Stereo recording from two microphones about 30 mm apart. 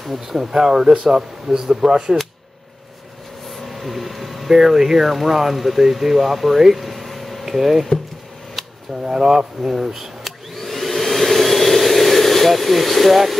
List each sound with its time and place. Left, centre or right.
0.0 s speech: centre
0.4 s speech: centre
3.4 s speech: centre
6.6 s air conditioning: centre
7.5 s speech: centre
9.0 s speech: centre
9.9 s vacuum cleaner: centre